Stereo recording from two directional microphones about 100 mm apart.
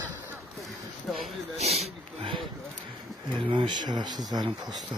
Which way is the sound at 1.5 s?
90° right.